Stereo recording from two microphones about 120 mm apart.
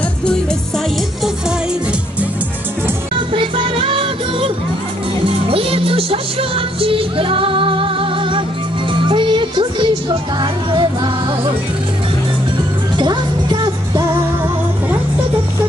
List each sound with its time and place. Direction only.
3.3 s music: 45° right (ahead or behind)
5.5 s music: 50° right (ahead or behind)
12.9 s music: 40° right (ahead or behind)